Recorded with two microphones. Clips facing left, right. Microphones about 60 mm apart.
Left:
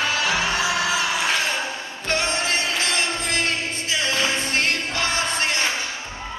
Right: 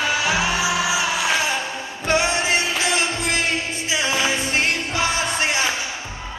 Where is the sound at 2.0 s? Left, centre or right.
Centre.